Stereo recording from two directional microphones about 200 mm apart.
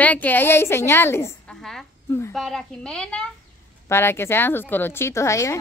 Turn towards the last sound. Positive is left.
turn(degrees=15)  # may be behind; listen again after turning